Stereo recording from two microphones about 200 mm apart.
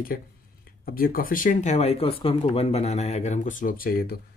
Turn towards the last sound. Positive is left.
turn(degrees=50)  # may be behind; listen again after turning